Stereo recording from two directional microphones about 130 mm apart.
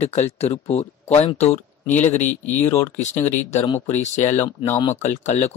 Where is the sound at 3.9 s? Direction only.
65° left (ahead or behind).